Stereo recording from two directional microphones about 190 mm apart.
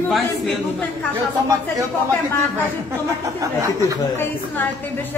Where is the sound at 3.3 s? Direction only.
15° right (ahead or behind).